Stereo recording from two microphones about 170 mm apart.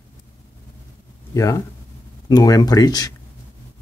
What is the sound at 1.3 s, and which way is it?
Speech, 15° left (ahead or behind).